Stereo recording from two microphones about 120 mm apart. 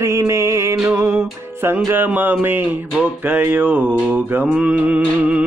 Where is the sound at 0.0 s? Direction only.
25° right (ahead or behind).